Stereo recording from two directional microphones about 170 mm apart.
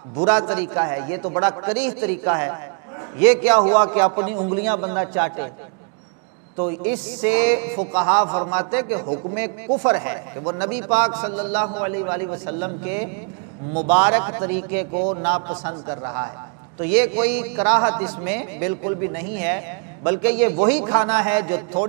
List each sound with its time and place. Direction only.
0.2 s a man's voice: 10° right (ahead or behind)
6.6 s a man's voice: 15° right (ahead or behind)
15.5 s a man's voice: 25° right (ahead or behind)
16.8 s a man's voice: 10° right (ahead or behind)